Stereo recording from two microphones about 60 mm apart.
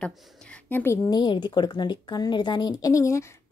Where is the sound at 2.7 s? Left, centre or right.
Left.